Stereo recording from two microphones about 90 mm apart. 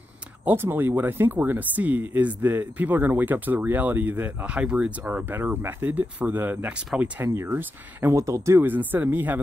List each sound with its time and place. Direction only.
0.5 s speech: 25° right (ahead or behind)
8.5 s speech: 20° right (ahead or behind)